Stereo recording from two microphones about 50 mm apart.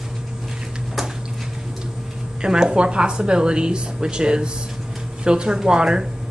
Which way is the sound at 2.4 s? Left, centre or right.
Centre.